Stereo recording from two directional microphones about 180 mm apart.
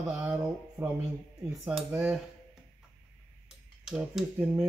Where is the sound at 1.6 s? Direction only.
5° right (ahead or behind).